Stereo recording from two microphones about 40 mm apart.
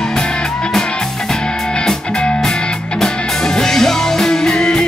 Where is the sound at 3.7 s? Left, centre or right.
Centre.